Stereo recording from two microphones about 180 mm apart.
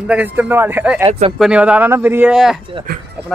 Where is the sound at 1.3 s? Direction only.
5° right (ahead or behind).